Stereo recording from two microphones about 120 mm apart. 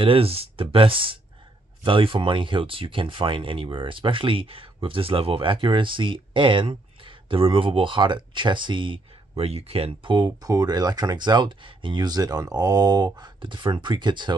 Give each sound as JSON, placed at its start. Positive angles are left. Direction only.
{"t": 0.0, "sound": "speech", "side_deg": -50}
{"t": 10.2, "sound": "speech", "side_deg": -30}